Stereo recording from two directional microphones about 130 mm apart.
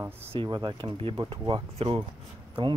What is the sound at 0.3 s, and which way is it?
Speech, 40° right (ahead or behind).